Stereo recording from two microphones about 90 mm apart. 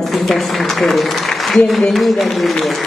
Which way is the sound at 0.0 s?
Centre (ahead or behind).